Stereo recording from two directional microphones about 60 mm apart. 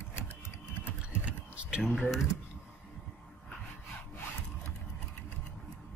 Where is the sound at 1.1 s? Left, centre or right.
Right.